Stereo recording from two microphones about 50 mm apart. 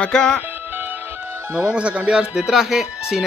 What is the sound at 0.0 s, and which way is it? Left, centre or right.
Speech, centre.